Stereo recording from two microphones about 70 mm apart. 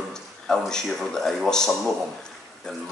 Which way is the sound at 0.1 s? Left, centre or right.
Centre.